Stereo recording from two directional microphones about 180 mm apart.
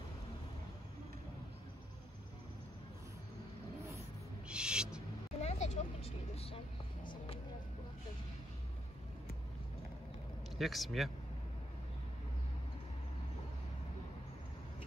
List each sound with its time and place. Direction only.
4.5 s owl: 5° right (ahead or behind)
5.4 s vehicle: 40° left (ahead or behind)
10.6 s speech: centre (ahead or behind)